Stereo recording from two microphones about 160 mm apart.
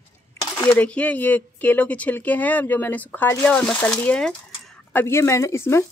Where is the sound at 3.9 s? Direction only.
5° left (ahead or behind).